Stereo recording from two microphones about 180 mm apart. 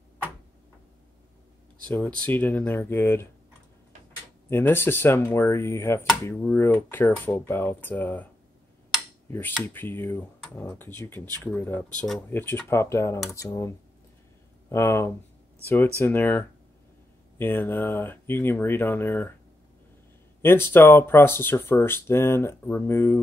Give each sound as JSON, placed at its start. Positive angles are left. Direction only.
{"t": 2.1, "sound": "speech", "side_deg": 10}
{"t": 4.5, "sound": "speech", "side_deg": 15}
{"t": 9.6, "sound": "speech", "side_deg": 10}
{"t": 20.4, "sound": "speech", "side_deg": 10}